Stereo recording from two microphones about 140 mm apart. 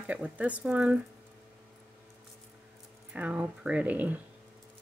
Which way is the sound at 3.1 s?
10° right (ahead or behind).